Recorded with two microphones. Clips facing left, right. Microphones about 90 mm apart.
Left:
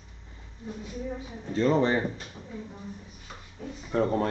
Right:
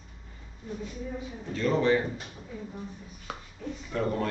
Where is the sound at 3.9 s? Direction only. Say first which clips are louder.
Left 4 dB; 30° left (ahead or behind).